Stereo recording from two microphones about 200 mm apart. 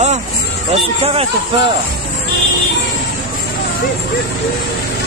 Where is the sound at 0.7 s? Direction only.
30° right (ahead or behind).